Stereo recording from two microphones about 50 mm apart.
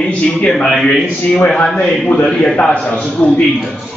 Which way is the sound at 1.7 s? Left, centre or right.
Centre.